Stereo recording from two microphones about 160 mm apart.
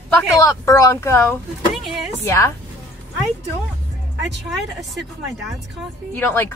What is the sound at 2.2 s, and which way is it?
Speech, 15° left (ahead or behind).